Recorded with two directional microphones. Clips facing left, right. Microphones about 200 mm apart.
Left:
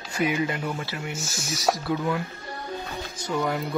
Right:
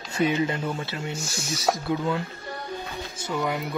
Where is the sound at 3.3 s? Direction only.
Centre (ahead or behind).